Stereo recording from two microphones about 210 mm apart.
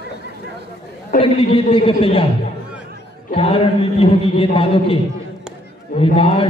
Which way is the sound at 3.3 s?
25° left (ahead or behind).